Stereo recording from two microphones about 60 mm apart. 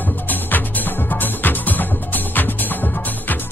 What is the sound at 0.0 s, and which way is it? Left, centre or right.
Music, left.